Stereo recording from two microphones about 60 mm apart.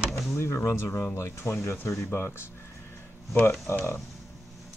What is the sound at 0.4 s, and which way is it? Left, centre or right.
Speech, left.